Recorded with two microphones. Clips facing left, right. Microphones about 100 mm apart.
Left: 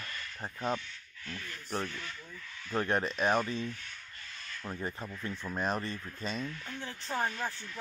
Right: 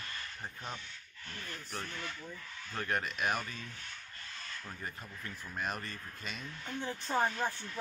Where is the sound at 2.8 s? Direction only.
30° left (ahead or behind).